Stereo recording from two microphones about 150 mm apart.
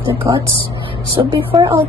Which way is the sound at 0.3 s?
20° right (ahead or behind).